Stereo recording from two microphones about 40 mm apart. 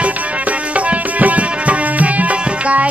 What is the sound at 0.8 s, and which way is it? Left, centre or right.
Tabla, right.